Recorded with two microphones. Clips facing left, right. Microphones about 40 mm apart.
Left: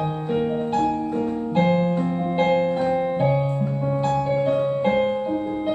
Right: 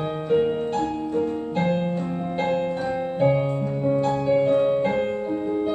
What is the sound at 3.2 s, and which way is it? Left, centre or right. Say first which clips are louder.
Music: right 6 dB; right.